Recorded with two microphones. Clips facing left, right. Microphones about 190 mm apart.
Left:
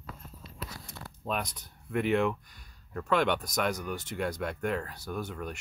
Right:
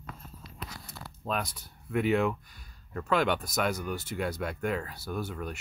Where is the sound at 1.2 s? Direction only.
Centre (ahead or behind).